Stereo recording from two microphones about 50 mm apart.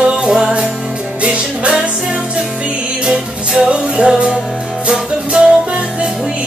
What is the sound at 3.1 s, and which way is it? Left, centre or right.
Music, right.